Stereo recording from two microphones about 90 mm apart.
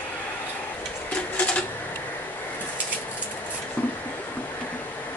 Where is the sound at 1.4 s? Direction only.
15° left (ahead or behind).